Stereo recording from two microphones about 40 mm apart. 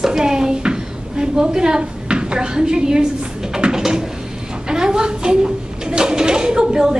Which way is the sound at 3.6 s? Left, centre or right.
Centre.